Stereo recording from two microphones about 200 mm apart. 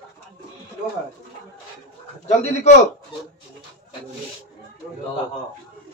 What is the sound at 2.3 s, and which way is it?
Speech, 35° left (ahead or behind).